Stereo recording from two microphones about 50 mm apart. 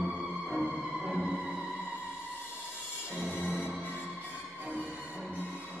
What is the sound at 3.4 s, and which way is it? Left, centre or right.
Music, centre.